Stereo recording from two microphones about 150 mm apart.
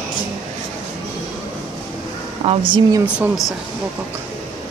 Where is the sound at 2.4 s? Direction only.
30° right (ahead or behind).